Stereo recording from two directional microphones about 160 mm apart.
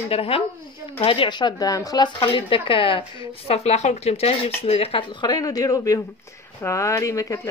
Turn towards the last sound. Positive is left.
turn(degrees=20)  # may be behind; listen again after turning